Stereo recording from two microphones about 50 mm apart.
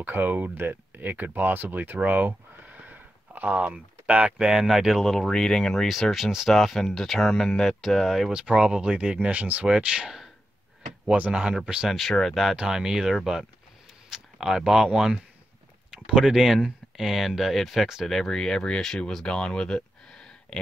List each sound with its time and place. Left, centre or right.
0.0 s speech: right
2.0 s a sound: right
3.6 s speech: right
4.5 s speech: centre
5.0 s speech: centre
8.3 s speech: centre
9.7 s speech: centre
11.3 s speech: centre
11.9 s speech: centre
12.5 s speech: centre